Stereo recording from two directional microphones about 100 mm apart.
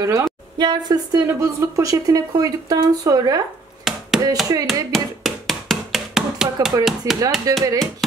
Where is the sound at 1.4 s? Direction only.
30° right (ahead or behind).